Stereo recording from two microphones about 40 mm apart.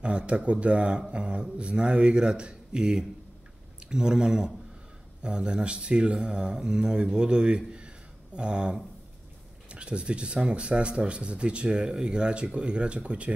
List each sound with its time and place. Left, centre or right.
0.0 s speech: right